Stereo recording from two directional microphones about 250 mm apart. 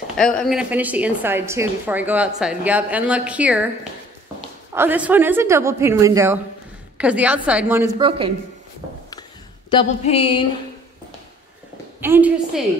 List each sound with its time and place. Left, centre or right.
0.2 s a woman's voice: centre
8.0 s speech: right
9.7 s speech: left
12.0 s a woman's voice: centre